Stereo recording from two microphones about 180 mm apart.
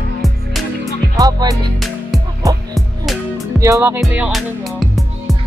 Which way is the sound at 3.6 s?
15° right (ahead or behind).